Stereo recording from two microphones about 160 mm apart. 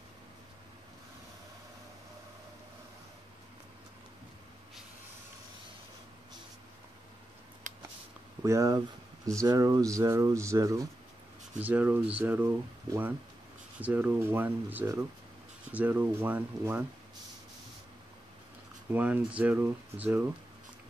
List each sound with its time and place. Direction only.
7.7 s a sound: 50° right (ahead or behind)
8.4 s speech: 20° right (ahead or behind)
18.9 s speech: 10° right (ahead or behind)